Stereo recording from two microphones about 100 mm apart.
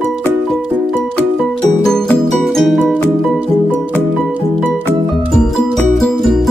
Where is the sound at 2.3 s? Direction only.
Centre (ahead or behind).